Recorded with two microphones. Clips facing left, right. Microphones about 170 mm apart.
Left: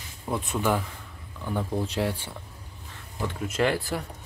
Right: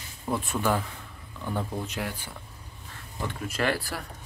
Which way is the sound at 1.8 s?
30° left (ahead or behind).